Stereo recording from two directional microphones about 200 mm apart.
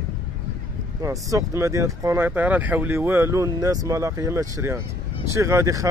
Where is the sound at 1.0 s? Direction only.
15° right (ahead or behind).